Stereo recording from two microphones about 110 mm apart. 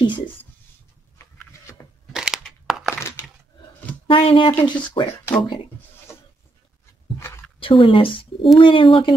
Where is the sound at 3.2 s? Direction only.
20° left (ahead or behind).